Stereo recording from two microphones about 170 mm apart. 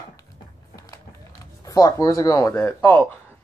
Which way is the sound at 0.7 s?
20° left (ahead or behind).